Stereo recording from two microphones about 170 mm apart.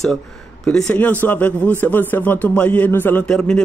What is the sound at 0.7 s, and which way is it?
A man's voice, 5° left (ahead or behind).